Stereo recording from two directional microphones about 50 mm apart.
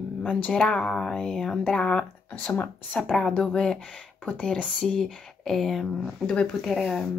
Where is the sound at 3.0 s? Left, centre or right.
Centre.